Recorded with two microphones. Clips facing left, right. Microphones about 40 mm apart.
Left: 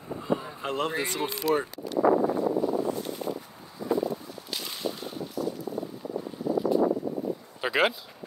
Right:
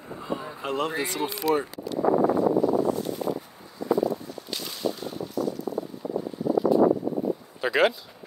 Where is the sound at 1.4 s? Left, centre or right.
Right.